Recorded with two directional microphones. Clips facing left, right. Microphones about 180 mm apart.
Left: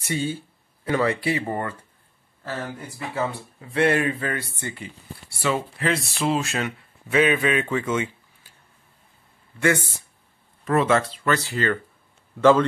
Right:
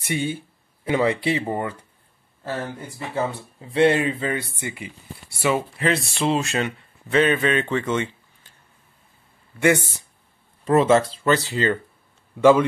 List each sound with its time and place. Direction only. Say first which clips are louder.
0.0 s speech: right 1 dB; 15° right (ahead or behind)
3.7 s speech: right 3 dB; 20° right (ahead or behind)
5.9 s speech: right 2 dB; centre (ahead or behind)
7.7 s a sound: right 1 dB; 5° left (ahead or behind)
10.6 s speech: right 4 dB; 25° right (ahead or behind); by 12.6 s 10° right (ahead or behind)